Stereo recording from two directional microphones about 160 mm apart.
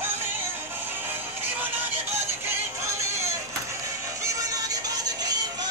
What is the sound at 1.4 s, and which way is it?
Music, 10° right (ahead or behind).